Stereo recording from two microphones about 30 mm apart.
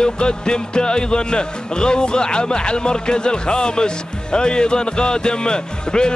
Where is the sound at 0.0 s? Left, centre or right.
Left.